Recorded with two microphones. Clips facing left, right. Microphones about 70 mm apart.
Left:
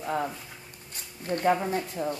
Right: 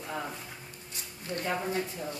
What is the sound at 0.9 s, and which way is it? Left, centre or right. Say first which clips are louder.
Speech: left 6 dB; left.